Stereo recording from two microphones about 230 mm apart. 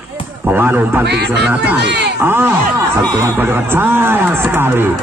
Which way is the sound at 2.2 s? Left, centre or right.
Centre.